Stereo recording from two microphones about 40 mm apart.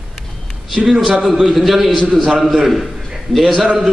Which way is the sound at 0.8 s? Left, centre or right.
Centre.